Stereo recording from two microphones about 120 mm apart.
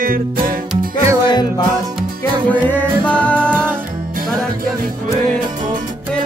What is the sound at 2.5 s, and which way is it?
Music, 15° left (ahead or behind).